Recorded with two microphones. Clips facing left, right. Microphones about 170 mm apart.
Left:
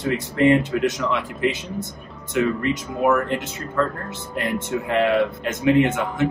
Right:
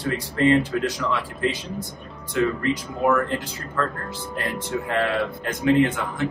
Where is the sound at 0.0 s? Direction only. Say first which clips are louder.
Left 3 dB; 20° left (ahead or behind).